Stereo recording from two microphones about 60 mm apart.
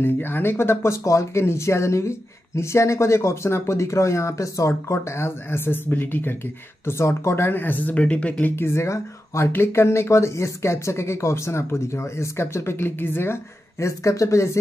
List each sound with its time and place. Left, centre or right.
0.0 s speech: left
1.0 s speech: left
6.9 s speech: left
8.5 s speech: left
12.7 s speech: left